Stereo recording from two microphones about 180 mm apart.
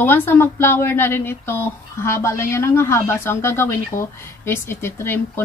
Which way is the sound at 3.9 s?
45° left (ahead or behind).